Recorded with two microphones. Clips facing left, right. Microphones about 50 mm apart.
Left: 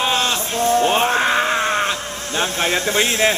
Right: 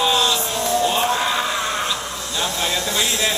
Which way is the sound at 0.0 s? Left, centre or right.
Left.